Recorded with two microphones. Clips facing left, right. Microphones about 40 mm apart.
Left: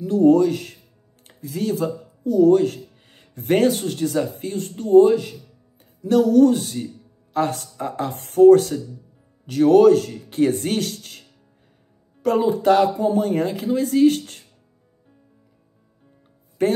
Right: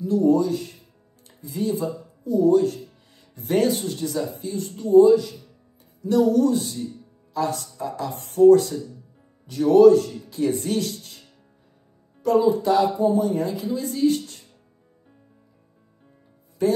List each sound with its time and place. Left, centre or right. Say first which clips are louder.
0.0 s speech: left 4 dB; left
1.4 s speech: left 2 dB; left
16.6 s speech: left 1 dB; left